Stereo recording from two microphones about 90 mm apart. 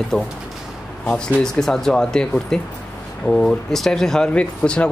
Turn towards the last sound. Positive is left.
turn(degrees=10)  # may be behind; listen again after turning